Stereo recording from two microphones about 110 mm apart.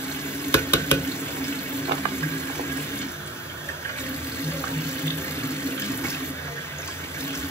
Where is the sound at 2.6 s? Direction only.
20° left (ahead or behind).